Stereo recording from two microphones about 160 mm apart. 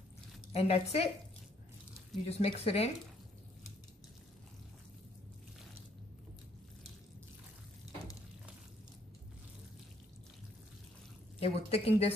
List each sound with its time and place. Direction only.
0.5 s a woman's voice: 40° left (ahead or behind)
2.2 s a woman's voice: 40° left (ahead or behind)
11.3 s a woman's voice: 40° left (ahead or behind)